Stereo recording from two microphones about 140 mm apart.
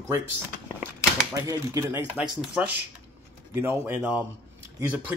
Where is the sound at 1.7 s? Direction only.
20° right (ahead or behind).